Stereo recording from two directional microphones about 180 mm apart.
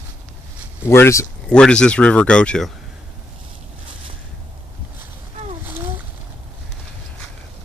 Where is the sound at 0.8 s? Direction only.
15° left (ahead or behind).